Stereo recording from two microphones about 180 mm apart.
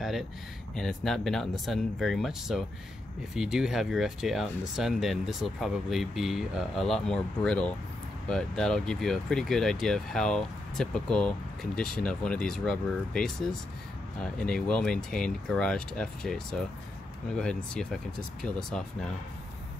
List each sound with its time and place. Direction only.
0.7 s speech: centre (ahead or behind)